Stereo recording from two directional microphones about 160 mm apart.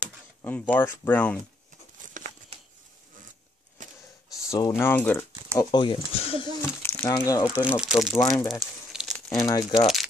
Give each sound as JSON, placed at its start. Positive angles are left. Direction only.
{"t": 0.4, "sound": "speech", "side_deg": 10}
{"t": 2.1, "sound": "crumpling", "side_deg": -55}
{"t": 3.8, "sound": "a sound", "side_deg": -50}
{"t": 4.5, "sound": "speech", "side_deg": 20}
{"t": 5.6, "sound": "speech", "side_deg": 25}
{"t": 6.8, "sound": "speech", "side_deg": 15}
{"t": 7.6, "sound": "speech", "side_deg": -5}
{"t": 8.2, "sound": "speech", "side_deg": 20}
{"t": 8.5, "sound": "a sound", "side_deg": 0}
{"t": 9.3, "sound": "speech", "side_deg": 25}